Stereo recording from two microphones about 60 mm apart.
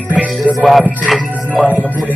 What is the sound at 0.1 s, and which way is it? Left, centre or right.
Music, right.